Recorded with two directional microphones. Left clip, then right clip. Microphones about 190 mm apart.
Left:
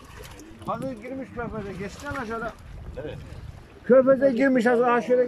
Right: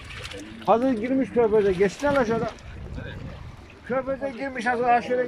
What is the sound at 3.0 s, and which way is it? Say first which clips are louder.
A man's voice: left 4 dB; 40° left (ahead or behind).